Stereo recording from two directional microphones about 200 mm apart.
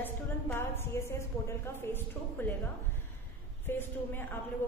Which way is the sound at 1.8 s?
10° left (ahead or behind).